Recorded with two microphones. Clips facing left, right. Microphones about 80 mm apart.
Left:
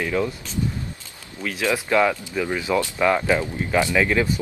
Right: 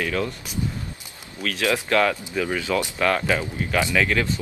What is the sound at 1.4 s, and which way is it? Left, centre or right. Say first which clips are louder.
Speech: even; centre.